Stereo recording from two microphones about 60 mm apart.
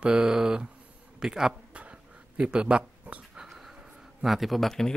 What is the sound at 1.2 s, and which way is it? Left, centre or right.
Speech, centre.